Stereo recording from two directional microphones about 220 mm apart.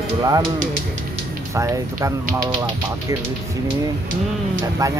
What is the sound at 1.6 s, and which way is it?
Speech, 15° right (ahead or behind).